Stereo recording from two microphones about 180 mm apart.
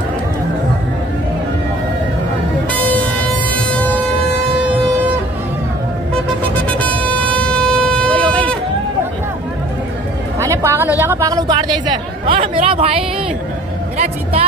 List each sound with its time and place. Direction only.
2.7 s vehicle: 10° left (ahead or behind)
6.7 s vehicle: 10° left (ahead or behind)
10.4 s a sound: 15° right (ahead or behind)
11.0 s chatter: 15° right (ahead or behind)
12.6 s speech: 30° right (ahead or behind)